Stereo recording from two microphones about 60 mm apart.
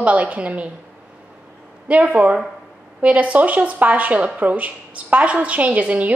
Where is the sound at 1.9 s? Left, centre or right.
Right.